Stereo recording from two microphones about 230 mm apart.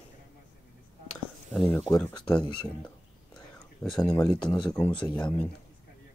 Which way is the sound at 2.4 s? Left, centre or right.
Left.